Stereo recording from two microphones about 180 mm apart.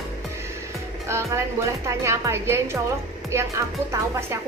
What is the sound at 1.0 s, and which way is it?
Music, 15° right (ahead or behind).